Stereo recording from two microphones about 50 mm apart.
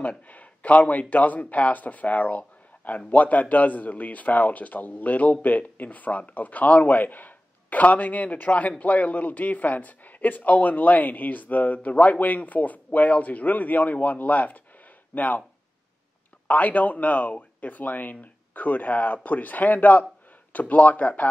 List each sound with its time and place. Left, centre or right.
0.0 s a man's voice: left
16.4 s a man's voice: left